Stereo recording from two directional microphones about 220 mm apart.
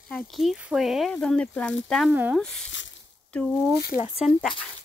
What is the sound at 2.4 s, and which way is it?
Speech, 5° left (ahead or behind).